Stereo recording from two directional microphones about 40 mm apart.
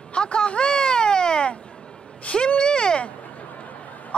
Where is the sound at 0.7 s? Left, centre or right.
Centre.